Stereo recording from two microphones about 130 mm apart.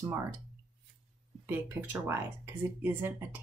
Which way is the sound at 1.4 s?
15° right (ahead or behind).